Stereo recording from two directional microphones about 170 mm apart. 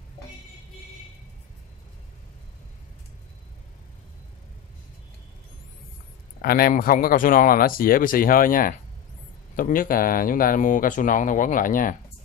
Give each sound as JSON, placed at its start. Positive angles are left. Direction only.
{"t": 6.4, "sound": "speech", "side_deg": 60}